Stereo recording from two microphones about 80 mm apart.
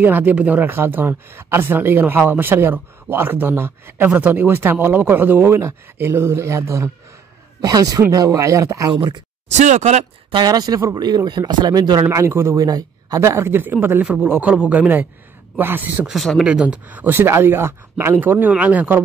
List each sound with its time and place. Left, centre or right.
0.0 s speech: right
7.6 s speech: right
8.9 s speech: right
10.3 s speech: right
11.0 s speech: right
12.1 s speech: right
12.5 s speech: right
13.5 s speech: right
16.1 s speech: centre
16.4 s speech: centre